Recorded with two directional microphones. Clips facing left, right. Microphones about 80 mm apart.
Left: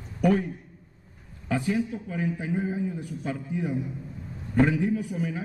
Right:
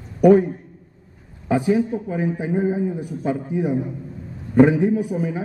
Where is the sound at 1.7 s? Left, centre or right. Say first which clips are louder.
Right 7 dB; right.